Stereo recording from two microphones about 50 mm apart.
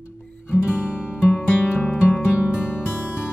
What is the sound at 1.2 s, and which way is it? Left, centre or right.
Music, left.